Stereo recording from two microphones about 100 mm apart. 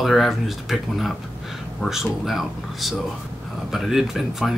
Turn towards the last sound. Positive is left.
turn(degrees=-5)  # may be behind; listen again after turning